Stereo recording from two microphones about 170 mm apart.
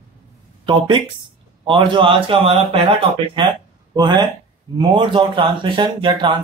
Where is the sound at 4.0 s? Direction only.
25° right (ahead or behind).